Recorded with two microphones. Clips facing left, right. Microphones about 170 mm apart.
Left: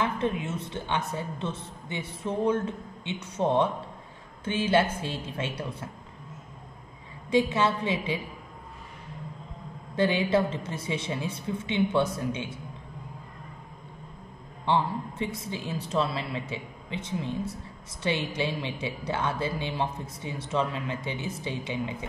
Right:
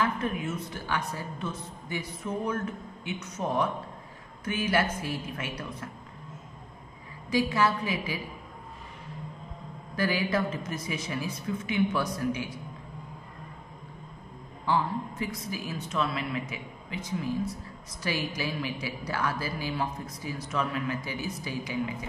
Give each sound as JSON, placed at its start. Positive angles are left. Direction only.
{"t": 0.0, "sound": "speech", "side_deg": 25}
{"t": 7.2, "sound": "speech", "side_deg": 25}
{"t": 9.9, "sound": "speech", "side_deg": 25}
{"t": 14.6, "sound": "speech", "side_deg": 25}